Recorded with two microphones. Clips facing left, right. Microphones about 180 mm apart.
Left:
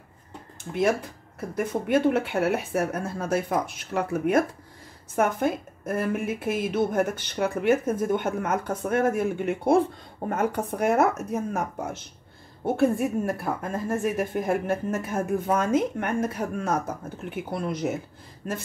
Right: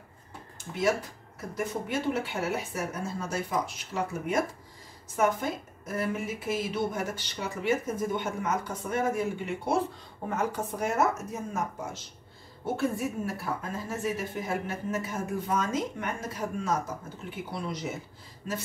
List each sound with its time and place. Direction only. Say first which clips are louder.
1.9 s speech: left 11 dB; 55° left (ahead or behind)